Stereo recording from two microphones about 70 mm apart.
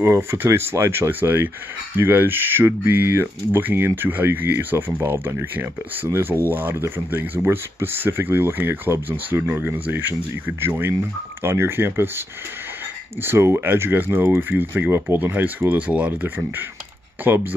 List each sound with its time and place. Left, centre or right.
0.0 s speech: right